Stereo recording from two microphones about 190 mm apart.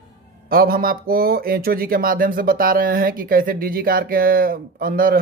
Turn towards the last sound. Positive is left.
turn(degrees=-50)  # may be behind; listen again after turning